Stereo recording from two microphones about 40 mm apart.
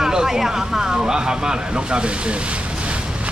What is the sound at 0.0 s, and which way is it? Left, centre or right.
Speech, centre.